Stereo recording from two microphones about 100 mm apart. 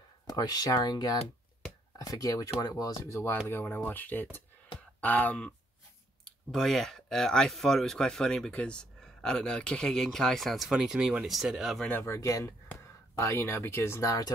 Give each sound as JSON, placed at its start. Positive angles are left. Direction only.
{"t": 0.3, "sound": "speech", "side_deg": 40}
{"t": 6.5, "sound": "speech", "side_deg": 5}
{"t": 11.8, "sound": "speech", "side_deg": 20}